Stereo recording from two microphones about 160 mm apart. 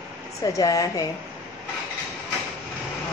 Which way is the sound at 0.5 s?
20° left (ahead or behind).